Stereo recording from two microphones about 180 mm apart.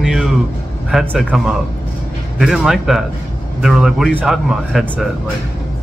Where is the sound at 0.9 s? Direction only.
Centre (ahead or behind).